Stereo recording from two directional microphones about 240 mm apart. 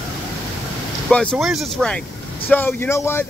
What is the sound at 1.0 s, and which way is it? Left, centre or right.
Speech, centre.